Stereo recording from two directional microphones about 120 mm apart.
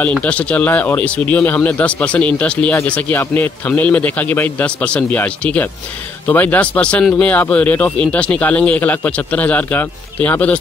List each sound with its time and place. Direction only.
0.0 s speech: 10° left (ahead or behind)